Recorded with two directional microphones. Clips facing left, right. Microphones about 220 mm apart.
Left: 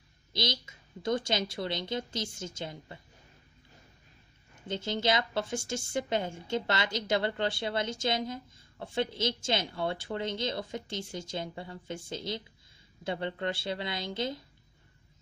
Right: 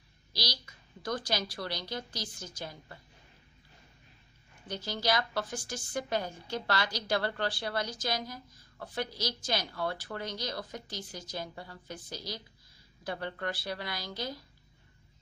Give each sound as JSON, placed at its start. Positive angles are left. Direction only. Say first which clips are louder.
{"t": 0.3, "sound": "a woman's voice", "louder": "left 5 dB", "side_deg": 25}
{"t": 4.6, "sound": "a woman's voice", "louder": "left 3 dB", "side_deg": 25}